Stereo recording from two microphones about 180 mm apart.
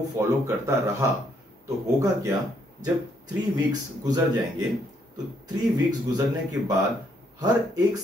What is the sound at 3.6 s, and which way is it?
Speech, 20° right (ahead or behind).